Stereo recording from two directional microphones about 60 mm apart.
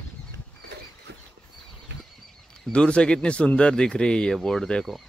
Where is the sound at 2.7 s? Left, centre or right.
Centre.